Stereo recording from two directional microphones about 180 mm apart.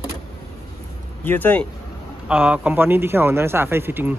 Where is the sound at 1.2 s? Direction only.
10° left (ahead or behind).